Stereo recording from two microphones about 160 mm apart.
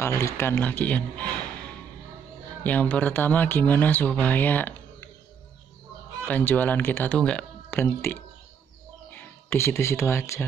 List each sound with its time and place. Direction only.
0.0 s speech: 15° left (ahead or behind)
2.6 s speech: 10° left (ahead or behind)
6.2 s speech: 10° left (ahead or behind)